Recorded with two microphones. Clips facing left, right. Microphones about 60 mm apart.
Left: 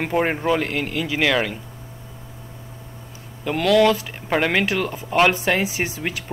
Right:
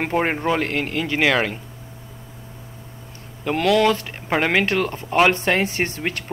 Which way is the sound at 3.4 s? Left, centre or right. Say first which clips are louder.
Left 1 dB; centre.